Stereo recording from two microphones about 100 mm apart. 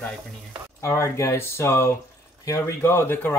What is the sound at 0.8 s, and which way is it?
Speech, 30° left (ahead or behind).